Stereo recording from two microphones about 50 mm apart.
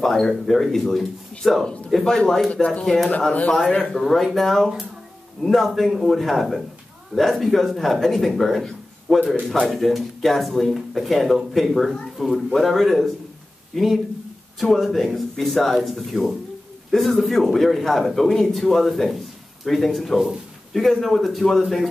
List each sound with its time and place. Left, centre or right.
0.0 s speech: centre
1.4 s a man's voice: centre
2.0 s speech: centre
3.8 s speech: centre